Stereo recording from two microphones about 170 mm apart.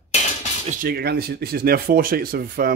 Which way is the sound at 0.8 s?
65° right (ahead or behind).